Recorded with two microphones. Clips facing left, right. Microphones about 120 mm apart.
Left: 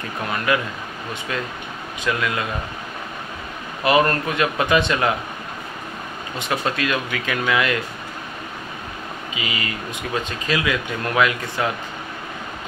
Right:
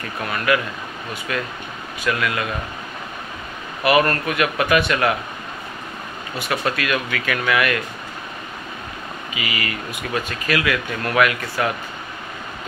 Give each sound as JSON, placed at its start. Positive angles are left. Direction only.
{"t": 0.5, "sound": "speech", "side_deg": 25}
{"t": 3.8, "sound": "speech", "side_deg": 25}
{"t": 6.3, "sound": "speech", "side_deg": 20}
{"t": 9.3, "sound": "speech", "side_deg": 25}